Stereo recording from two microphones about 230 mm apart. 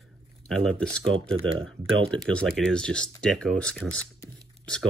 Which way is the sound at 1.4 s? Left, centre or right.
Right.